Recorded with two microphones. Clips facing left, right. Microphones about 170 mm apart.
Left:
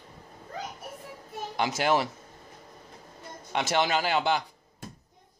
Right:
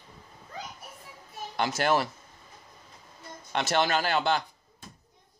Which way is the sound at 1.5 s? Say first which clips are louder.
Even; 15° left (ahead or behind).